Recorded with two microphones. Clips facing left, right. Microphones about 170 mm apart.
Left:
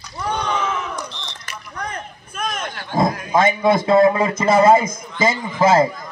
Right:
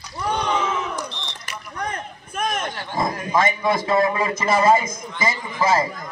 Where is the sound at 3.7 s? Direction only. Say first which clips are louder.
Left 7 dB; 25° left (ahead or behind).